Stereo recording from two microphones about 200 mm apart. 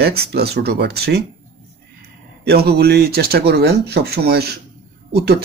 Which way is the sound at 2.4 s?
55° right (ahead or behind).